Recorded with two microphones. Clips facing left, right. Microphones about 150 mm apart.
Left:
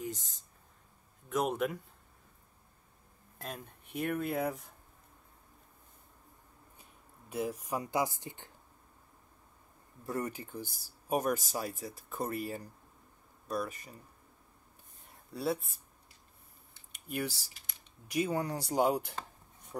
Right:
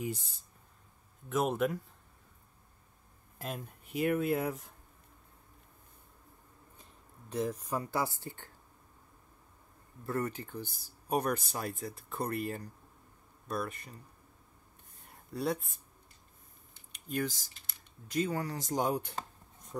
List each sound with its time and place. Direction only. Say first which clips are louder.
1.3 s speech: right 1 dB; centre (ahead or behind)
3.3 s speech: right 3 dB; 5° right (ahead or behind)
6.8 s speech: right 2 dB; 10° left (ahead or behind)
10.0 s speech: right 2 dB; 15° left (ahead or behind)
15.3 s speech: even; centre (ahead or behind)
16.9 s speech: right 2 dB; 10° left (ahead or behind)
19.7 s speech: right 1 dB; 30° left (ahead or behind)